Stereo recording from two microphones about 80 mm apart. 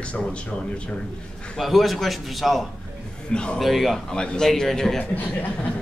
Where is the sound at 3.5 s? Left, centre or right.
Centre.